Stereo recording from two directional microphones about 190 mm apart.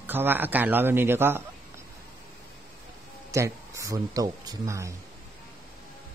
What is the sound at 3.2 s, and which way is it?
Speech, 15° right (ahead or behind).